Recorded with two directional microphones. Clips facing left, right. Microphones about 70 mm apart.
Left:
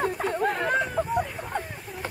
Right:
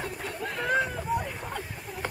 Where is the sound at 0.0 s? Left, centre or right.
Left.